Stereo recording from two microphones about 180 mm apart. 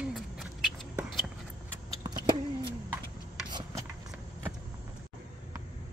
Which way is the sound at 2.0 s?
25° right (ahead or behind).